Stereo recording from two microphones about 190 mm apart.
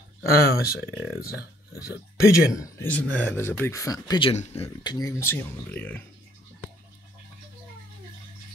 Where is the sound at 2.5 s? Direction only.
10° left (ahead or behind).